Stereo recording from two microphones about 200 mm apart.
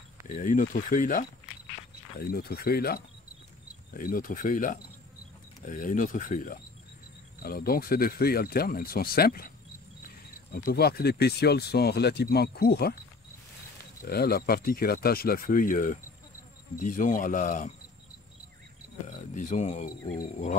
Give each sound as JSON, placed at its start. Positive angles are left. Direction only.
{"t": 0.3, "sound": "speech", "side_deg": 40}
{"t": 10.5, "sound": "speech", "side_deg": 50}
{"t": 14.0, "sound": "speech", "side_deg": 50}
{"t": 19.3, "sound": "speech", "side_deg": 35}